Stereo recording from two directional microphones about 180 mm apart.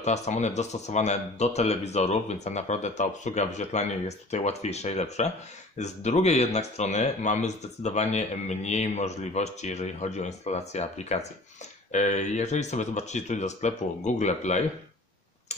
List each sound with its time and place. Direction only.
0.0 s speech: 40° left (ahead or behind)